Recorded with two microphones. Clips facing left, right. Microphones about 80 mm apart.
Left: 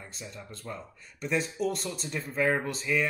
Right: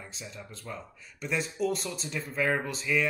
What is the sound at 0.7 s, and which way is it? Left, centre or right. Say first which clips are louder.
Speech: left 1 dB; centre.